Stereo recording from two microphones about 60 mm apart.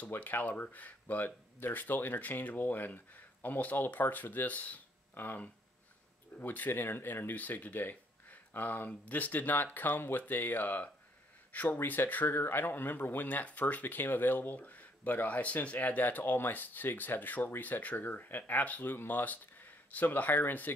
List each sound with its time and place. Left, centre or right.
0.0 s speech: left